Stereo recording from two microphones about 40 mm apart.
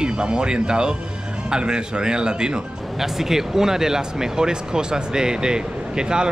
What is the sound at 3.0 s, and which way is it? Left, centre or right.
Speech, centre.